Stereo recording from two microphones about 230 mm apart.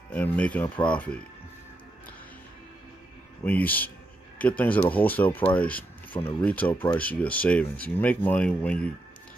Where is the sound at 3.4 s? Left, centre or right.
Centre.